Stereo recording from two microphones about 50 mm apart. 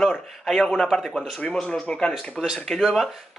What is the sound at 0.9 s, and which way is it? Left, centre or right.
Speech, centre.